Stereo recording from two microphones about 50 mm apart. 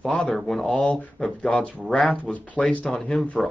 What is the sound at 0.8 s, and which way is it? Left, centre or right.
Speech, centre.